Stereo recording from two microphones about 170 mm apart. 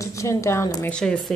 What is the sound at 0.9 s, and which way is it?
Speech, 5° left (ahead or behind).